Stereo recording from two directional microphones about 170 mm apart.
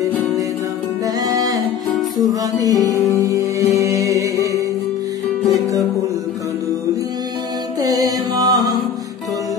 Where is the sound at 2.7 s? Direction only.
20° left (ahead or behind).